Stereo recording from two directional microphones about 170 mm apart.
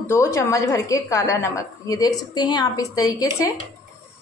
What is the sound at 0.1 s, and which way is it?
A woman's voice, 15° left (ahead or behind).